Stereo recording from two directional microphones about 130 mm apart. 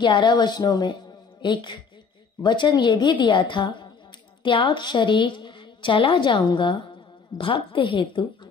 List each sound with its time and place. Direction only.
0.0 s a woman's voice: 35° left (ahead or behind)